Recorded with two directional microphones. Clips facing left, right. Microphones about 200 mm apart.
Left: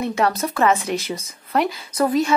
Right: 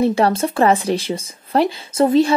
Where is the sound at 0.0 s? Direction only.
30° right (ahead or behind).